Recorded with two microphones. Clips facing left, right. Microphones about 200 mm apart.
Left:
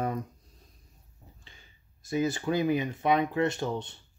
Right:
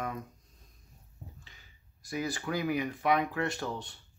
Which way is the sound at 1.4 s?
30° left (ahead or behind).